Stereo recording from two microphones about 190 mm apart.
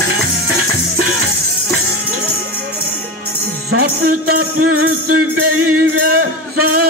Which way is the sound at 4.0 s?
50° right (ahead or behind).